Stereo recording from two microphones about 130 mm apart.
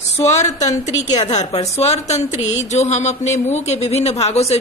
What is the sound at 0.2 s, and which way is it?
Speech, 60° left (ahead or behind).